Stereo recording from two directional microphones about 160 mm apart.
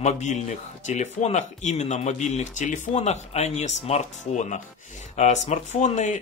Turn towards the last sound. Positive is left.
turn(degrees=45)  # may be behind; listen again after turning